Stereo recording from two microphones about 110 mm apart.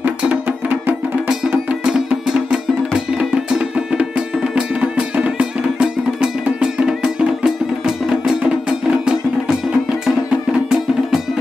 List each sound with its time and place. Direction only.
0.0 s music: 15° right (ahead or behind)